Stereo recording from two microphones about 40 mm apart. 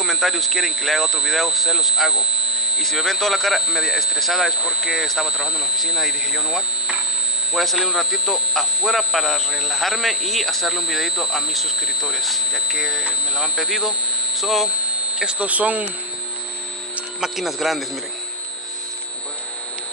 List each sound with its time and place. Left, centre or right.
0.0 s speech: centre
3.1 s speech: centre
3.5 s speech: centre
4.6 s speech: centre
5.9 s speech: centre
10.8 s speech: centre
15.2 s speech: right
17.2 s speech: centre